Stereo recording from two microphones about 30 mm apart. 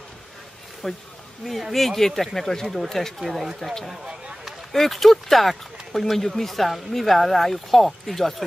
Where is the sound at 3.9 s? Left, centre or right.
Right.